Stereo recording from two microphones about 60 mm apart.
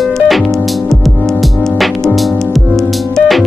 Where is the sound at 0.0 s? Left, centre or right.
Centre.